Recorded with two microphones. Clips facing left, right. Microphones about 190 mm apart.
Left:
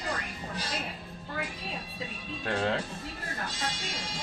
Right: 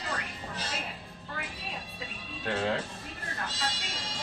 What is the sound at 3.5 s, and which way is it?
Speech, 10° left (ahead or behind).